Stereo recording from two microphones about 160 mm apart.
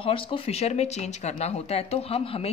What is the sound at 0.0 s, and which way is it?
A woman's voice, 35° left (ahead or behind).